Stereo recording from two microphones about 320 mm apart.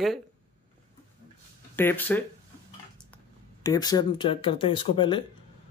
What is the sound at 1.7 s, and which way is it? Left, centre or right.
Speech, centre.